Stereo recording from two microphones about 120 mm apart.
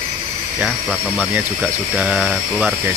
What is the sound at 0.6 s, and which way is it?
Speech, 5° right (ahead or behind).